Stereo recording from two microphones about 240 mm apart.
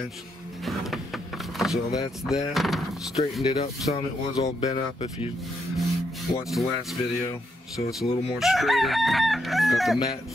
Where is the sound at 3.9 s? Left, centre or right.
Left.